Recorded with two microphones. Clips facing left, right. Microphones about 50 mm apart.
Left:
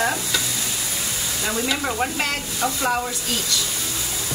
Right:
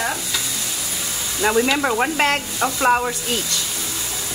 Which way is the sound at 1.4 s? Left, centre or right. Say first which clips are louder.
Right 8 dB; right.